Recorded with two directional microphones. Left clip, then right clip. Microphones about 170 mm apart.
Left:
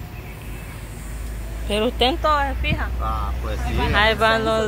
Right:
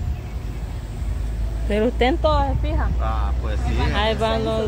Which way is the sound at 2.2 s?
5° right (ahead or behind).